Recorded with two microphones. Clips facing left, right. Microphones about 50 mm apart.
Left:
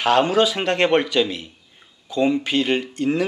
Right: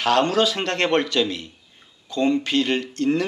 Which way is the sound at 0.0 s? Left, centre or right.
Centre.